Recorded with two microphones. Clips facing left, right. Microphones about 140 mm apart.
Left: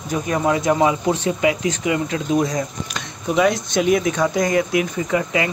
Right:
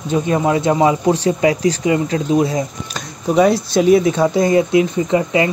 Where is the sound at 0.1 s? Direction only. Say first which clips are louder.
Right 4 dB; 25° right (ahead or behind).